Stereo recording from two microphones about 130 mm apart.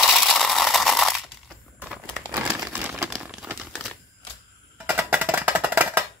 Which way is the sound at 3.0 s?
5° right (ahead or behind).